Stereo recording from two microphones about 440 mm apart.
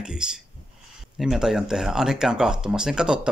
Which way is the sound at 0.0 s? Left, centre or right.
Centre.